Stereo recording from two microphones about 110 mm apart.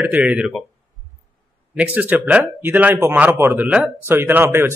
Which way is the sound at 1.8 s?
15° right (ahead or behind).